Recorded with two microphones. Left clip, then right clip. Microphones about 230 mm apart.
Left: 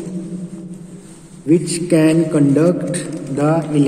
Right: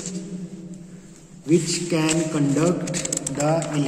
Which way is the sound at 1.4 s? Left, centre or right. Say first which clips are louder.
Left 6 dB; centre.